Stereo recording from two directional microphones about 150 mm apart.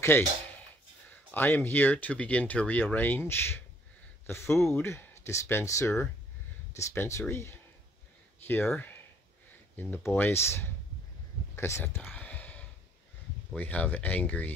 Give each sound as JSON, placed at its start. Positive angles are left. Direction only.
{"t": 0.0, "sound": "a sound", "side_deg": 15}
{"t": 1.3, "sound": "speech", "side_deg": 15}
{"t": 12.0, "sound": "whispering", "side_deg": 10}
{"t": 13.6, "sound": "speech", "side_deg": 10}